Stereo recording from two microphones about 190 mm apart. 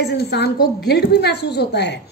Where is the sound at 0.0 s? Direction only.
60° left (ahead or behind).